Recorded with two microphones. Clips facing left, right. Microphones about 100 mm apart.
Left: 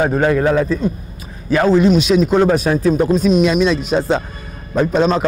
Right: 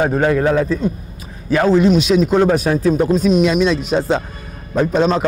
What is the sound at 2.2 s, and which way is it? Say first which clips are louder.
Speech: even; 35° left (ahead or behind).